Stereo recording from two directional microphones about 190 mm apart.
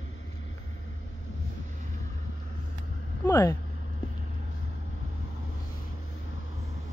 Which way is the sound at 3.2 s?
15° left (ahead or behind).